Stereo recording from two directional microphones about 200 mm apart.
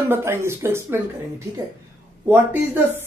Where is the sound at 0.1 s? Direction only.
10° right (ahead or behind).